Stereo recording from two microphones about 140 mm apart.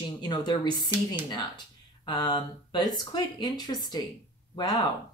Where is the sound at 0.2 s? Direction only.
30° left (ahead or behind).